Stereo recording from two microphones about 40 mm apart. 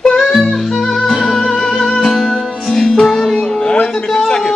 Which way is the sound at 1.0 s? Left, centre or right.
Centre.